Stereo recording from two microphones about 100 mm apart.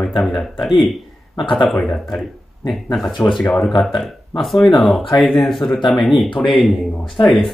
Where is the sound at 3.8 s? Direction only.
Centre (ahead or behind).